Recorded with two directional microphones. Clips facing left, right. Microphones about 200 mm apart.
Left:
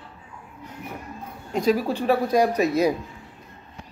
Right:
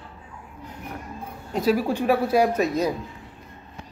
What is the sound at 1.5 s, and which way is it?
Speech, 5° right (ahead or behind).